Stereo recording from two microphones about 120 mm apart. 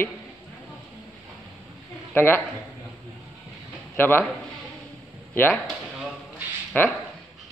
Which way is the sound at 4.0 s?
15° left (ahead or behind).